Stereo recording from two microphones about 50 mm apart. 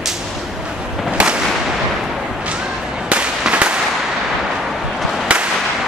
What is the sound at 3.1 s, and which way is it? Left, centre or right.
Fireworks, right.